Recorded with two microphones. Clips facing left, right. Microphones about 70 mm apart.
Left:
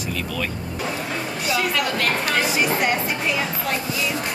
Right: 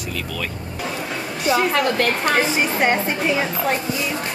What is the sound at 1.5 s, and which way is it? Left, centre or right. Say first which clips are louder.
A woman's voice: right 5 dB; right.